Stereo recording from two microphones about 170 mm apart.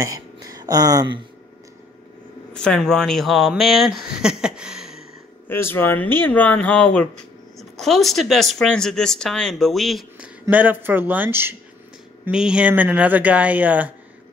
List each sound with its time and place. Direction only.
0.0 s speech: 20° right (ahead or behind)
2.5 s speech: 5° left (ahead or behind)
5.5 s speech: 15° left (ahead or behind)
10.4 s speech: 10° right (ahead or behind)